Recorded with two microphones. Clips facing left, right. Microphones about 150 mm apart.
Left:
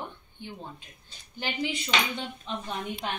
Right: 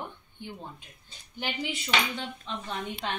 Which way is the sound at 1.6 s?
5° right (ahead or behind).